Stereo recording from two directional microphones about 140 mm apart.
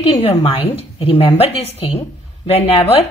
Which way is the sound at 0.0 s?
45° left (ahead or behind).